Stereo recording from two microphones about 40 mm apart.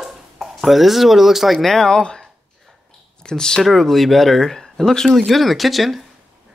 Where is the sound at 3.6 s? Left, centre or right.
Centre.